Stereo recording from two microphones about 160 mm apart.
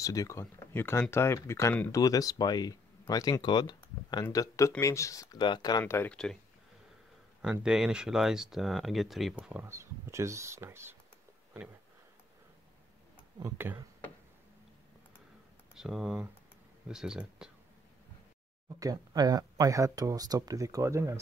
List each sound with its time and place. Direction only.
0.0 s speech: 20° left (ahead or behind)
7.6 s speech: 5° right (ahead or behind)
13.4 s speech: 20° right (ahead or behind)
15.7 s speech: 5° right (ahead or behind)
18.7 s speech: 25° right (ahead or behind)